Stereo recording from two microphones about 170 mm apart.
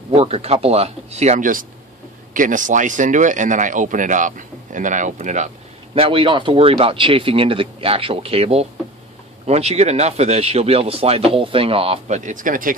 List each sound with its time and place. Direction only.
0.1 s speech: 35° right (ahead or behind)
5.9 s speech: 30° right (ahead or behind); by 12.7 s 50° right (ahead or behind)